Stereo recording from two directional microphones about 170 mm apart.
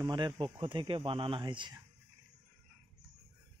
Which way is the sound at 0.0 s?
25° right (ahead or behind).